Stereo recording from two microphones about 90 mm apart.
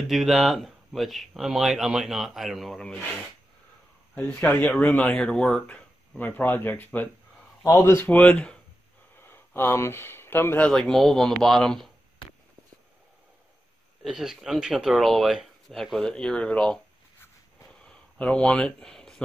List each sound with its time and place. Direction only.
0.1 s speech: centre (ahead or behind)
4.1 s speech: 10° left (ahead or behind)
5.7 s speech: 15° left (ahead or behind)
9.1 s a sound: 25° left (ahead or behind)
10.7 s speech: 5° left (ahead or behind)
14.0 s speech: 5° right (ahead or behind)
18.1 s speech: 10° left (ahead or behind)